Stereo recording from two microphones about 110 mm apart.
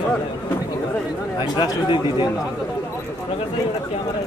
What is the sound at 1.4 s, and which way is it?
Speech, 40° left (ahead or behind).